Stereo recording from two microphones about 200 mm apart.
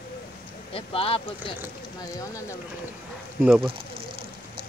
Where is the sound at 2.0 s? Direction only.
15° left (ahead or behind).